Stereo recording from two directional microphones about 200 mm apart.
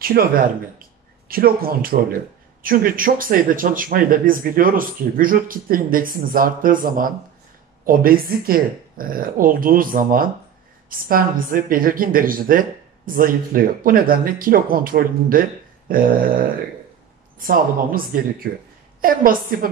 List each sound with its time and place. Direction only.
0.0 s speech: 45° right (ahead or behind)